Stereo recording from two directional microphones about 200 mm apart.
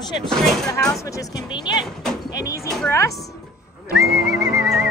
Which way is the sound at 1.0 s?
15° left (ahead or behind).